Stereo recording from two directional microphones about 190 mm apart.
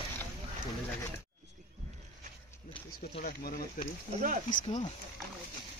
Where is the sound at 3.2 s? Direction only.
50° left (ahead or behind).